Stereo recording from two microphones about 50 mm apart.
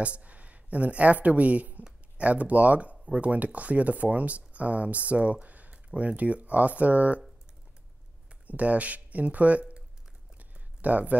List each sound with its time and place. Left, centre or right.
0.0 s speech: right
8.5 s speech: right